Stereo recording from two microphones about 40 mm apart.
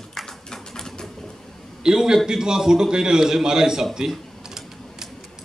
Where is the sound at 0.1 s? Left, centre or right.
Centre.